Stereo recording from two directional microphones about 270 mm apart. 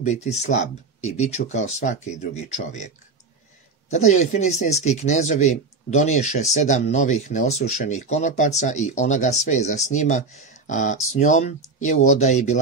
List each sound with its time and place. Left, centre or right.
0.0 s speech: left
3.9 s speech: left